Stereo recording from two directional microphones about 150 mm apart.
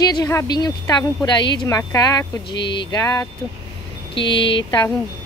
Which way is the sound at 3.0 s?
20° left (ahead or behind).